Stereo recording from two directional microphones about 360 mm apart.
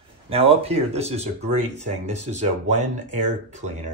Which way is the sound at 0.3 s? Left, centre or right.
Centre.